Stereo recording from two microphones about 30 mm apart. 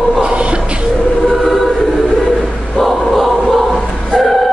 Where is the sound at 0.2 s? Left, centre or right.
Right.